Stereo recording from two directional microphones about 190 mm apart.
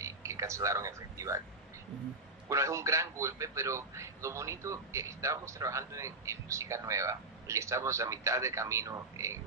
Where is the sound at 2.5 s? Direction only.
15° right (ahead or behind).